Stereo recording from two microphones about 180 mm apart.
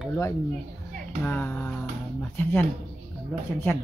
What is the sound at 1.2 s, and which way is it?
Music, 10° left (ahead or behind).